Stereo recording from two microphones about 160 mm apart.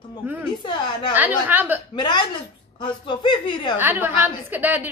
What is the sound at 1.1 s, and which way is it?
Speech, 10° right (ahead or behind).